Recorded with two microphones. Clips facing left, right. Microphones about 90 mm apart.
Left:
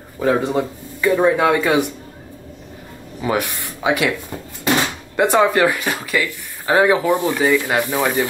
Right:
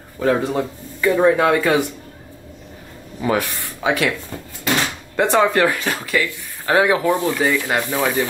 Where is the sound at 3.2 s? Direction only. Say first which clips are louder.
Right 1 dB; 20° left (ahead or behind).